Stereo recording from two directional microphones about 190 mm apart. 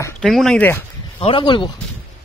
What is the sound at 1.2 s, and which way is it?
Speech, 25° left (ahead or behind).